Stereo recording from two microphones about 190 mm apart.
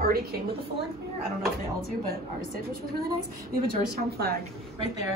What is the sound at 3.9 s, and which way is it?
Speech, 55° right (ahead or behind).